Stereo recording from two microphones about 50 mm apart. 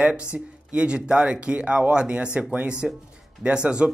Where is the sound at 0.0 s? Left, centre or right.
Right.